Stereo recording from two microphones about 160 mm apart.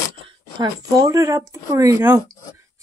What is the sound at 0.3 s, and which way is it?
Speech, 25° right (ahead or behind).